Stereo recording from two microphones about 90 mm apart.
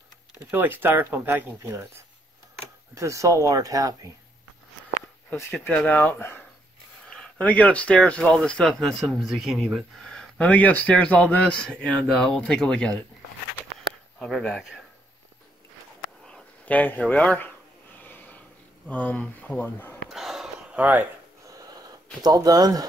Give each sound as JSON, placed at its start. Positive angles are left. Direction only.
{"t": 0.5, "sound": "speech", "side_deg": -25}
{"t": 2.9, "sound": "speech", "side_deg": -35}
{"t": 5.3, "sound": "speech", "side_deg": 25}
{"t": 7.1, "sound": "a man's voice", "side_deg": 10}
{"t": 14.2, "sound": "speech", "side_deg": 5}
{"t": 16.3, "sound": "a sound", "side_deg": 10}
{"t": 17.0, "sound": "a man's voice", "side_deg": 15}
{"t": 18.0, "sound": "a sound", "side_deg": 20}
{"t": 18.9, "sound": "a man's voice", "side_deg": 15}
{"t": 20.1, "sound": "a sound", "side_deg": -5}
{"t": 20.7, "sound": "speech", "side_deg": -15}
{"t": 22.2, "sound": "speech", "side_deg": -45}